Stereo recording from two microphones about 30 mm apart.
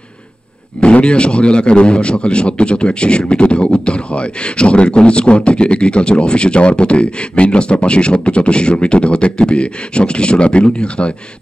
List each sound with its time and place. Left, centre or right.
0.7 s a man's voice: left